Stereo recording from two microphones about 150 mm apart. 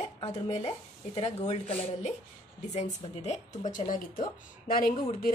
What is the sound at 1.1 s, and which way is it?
Speech, 45° left (ahead or behind).